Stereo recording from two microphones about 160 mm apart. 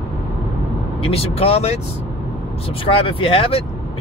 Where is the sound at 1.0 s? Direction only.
40° left (ahead or behind).